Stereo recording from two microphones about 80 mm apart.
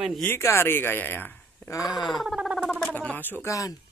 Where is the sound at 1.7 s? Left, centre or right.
Left.